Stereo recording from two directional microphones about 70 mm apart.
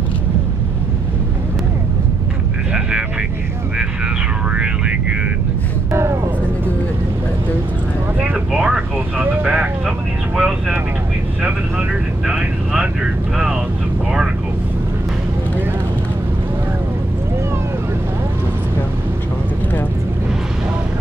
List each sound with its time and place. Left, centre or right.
5.9 s vehicle: right
8.5 s vehicle: centre
12.3 s vehicle: centre